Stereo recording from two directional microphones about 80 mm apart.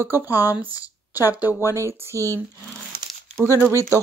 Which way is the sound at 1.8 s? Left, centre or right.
Right.